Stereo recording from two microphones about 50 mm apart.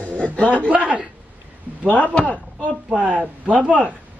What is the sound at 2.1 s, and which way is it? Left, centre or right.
Speech, left.